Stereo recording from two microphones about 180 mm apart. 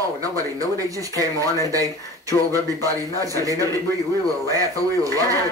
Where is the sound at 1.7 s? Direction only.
20° right (ahead or behind).